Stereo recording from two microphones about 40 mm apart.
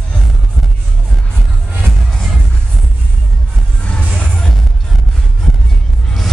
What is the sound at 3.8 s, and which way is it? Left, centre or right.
Music, left.